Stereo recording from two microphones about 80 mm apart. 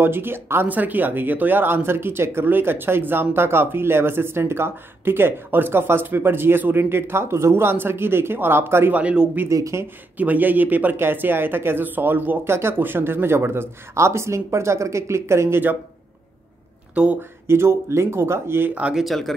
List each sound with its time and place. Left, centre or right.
0.0 s speech: right
8.9 s speech: centre
9.5 s speech: right
10.1 s speech: right
16.9 s speech: centre
17.5 s speech: right
18.8 s speech: centre
19.0 s speech: centre